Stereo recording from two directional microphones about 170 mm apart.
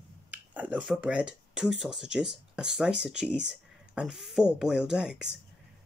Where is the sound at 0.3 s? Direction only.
10° right (ahead or behind).